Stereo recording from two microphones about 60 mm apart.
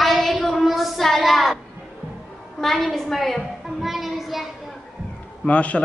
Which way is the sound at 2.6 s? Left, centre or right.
Centre.